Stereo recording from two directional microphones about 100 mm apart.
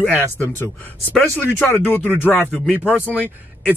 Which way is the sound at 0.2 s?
20° left (ahead or behind).